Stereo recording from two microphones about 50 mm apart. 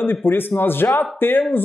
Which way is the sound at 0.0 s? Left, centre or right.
Left.